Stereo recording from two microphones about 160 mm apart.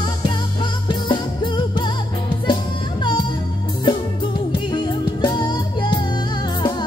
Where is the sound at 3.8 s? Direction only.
30° left (ahead or behind).